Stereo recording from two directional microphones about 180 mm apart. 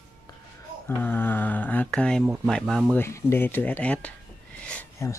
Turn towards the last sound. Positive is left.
turn(degrees=15)  # may be behind; listen again after turning